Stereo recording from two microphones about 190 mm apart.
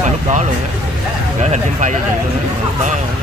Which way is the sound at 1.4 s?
40° right (ahead or behind).